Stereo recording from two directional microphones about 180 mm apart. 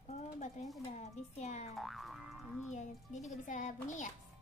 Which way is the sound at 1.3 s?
40° left (ahead or behind).